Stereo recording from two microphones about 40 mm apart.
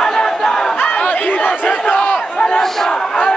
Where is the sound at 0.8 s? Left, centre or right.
Left.